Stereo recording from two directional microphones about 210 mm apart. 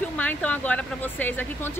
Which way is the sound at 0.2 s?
5° left (ahead or behind).